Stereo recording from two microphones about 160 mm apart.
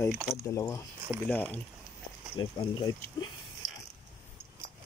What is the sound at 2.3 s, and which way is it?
Speech, 30° left (ahead or behind).